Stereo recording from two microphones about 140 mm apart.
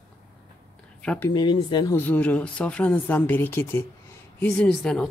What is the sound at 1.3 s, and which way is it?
Speech, 30° left (ahead or behind).